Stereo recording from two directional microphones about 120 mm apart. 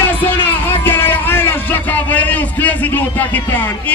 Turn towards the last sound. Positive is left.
turn(degrees=15)  # may be behind; listen again after turning